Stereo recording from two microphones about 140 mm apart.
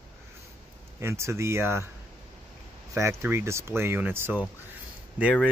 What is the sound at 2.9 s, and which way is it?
Speech, 20° right (ahead or behind).